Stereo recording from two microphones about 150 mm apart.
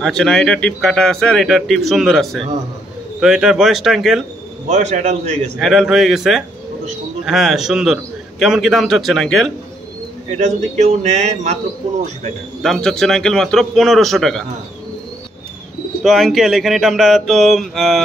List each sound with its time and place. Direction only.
0.0 s speech: 5° left (ahead or behind)
4.6 s speech: 50° right (ahead or behind)
5.6 s speech: centre (ahead or behind)
10.3 s speech: 50° right (ahead or behind)
12.6 s speech: centre (ahead or behind)
16.0 s speech: centre (ahead or behind)